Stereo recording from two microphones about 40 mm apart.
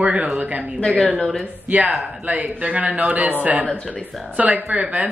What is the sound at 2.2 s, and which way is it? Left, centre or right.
Speech, right.